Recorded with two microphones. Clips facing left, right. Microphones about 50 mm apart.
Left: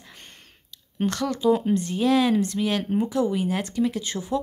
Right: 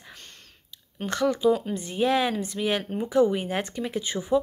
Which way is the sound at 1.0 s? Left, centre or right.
Centre.